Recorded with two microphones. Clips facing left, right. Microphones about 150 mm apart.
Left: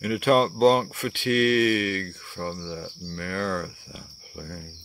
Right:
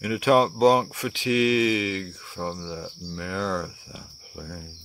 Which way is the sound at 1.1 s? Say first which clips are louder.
Even; 60° left (ahead or behind).